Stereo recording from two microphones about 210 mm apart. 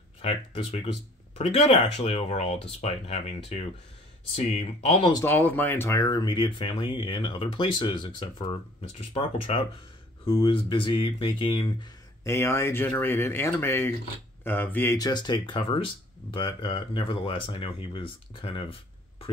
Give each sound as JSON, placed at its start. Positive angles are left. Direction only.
{"t": 0.2, "sound": "speech", "side_deg": 30}
{"t": 5.2, "sound": "speech", "side_deg": 10}
{"t": 12.3, "sound": "speech", "side_deg": 10}